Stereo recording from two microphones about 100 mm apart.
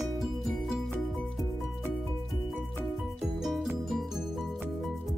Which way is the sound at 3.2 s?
Centre (ahead or behind).